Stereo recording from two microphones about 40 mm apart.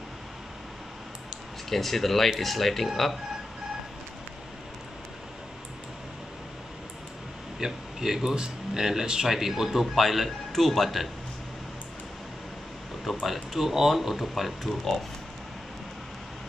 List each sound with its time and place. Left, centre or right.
1.7 s speech: centre
7.6 s speech: centre
13.0 s speech: centre